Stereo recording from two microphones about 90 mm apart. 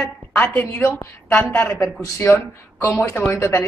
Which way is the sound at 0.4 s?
20° left (ahead or behind).